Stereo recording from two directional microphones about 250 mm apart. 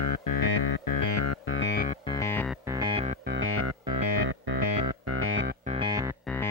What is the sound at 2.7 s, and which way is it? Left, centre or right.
Music, centre.